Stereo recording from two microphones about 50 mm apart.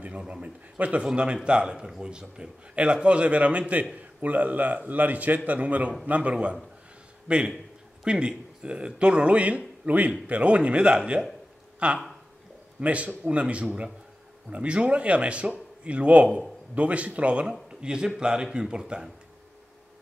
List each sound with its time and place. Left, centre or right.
0.3 s a man's voice: right